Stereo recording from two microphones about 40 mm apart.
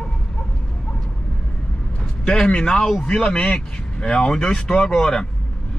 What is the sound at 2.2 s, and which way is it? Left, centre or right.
Speech, left.